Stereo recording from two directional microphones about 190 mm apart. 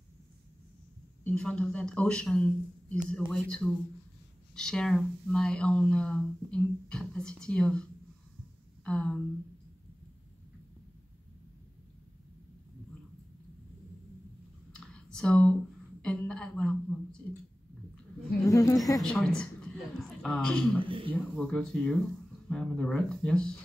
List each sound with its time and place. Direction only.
1.2 s speech: 5° left (ahead or behind)
14.7 s a sound: 5° left (ahead or behind)
16.0 s a woman's voice: 5° left (ahead or behind)
18.5 s speech: 15° left (ahead or behind)
18.9 s a woman's voice: 5° left (ahead or behind)
20.8 s a sound: 25° right (ahead or behind)
21.1 s speech: 5° left (ahead or behind)